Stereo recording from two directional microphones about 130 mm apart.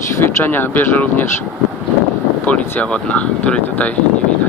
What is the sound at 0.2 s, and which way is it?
Speech, 15° left (ahead or behind).